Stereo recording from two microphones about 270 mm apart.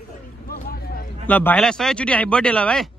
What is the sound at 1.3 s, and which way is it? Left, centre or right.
Speech, centre.